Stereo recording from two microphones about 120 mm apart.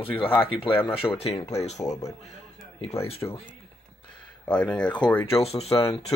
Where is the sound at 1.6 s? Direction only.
70° left (ahead or behind).